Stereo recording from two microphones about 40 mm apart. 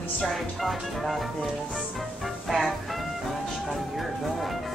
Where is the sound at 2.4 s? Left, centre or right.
Centre.